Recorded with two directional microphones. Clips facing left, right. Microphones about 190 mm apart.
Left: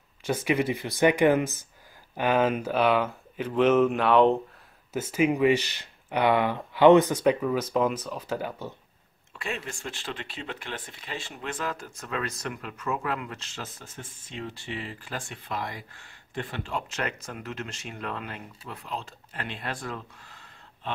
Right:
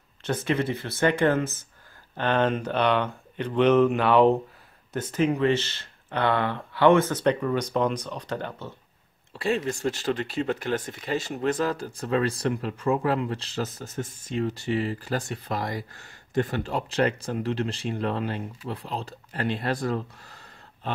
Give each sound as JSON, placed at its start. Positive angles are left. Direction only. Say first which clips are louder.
{"t": 0.2, "sound": "speech", "louder": "even", "side_deg": 10}
{"t": 9.3, "sound": "speech", "louder": "right 9 dB", "side_deg": -35}